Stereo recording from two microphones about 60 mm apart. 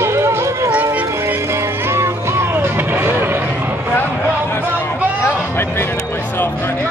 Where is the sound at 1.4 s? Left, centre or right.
Right.